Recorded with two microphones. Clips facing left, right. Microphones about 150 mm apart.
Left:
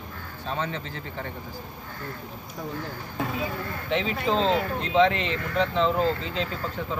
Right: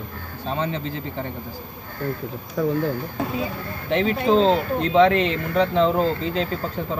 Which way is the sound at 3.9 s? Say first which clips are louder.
Right 7 dB; 50° right (ahead or behind).